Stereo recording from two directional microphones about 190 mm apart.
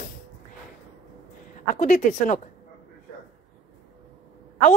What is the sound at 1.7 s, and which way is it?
Speech, 45° left (ahead or behind).